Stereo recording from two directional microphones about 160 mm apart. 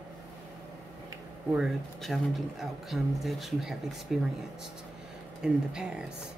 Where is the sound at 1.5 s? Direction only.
Centre (ahead or behind).